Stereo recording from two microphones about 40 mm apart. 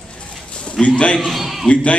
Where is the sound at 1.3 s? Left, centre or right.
Centre.